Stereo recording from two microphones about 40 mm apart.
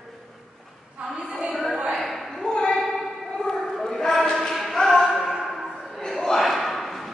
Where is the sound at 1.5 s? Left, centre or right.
Centre.